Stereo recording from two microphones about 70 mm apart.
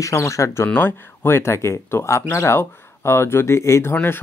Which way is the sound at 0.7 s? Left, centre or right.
Left.